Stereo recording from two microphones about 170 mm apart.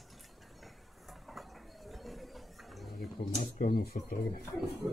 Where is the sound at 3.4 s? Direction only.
60° left (ahead or behind).